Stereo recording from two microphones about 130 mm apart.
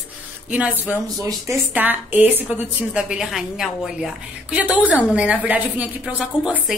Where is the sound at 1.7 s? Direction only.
15° right (ahead or behind).